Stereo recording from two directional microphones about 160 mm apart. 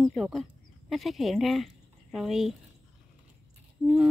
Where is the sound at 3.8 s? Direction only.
10° right (ahead or behind).